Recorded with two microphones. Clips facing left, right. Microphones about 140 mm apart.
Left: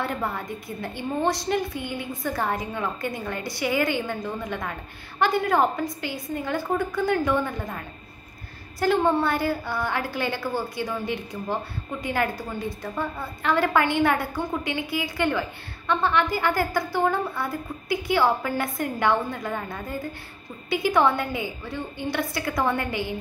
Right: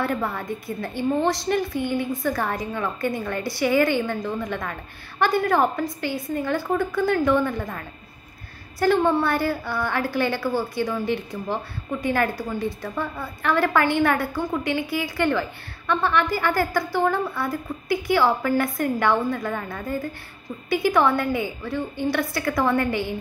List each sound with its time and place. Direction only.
0.0 s a woman's voice: 20° left (ahead or behind)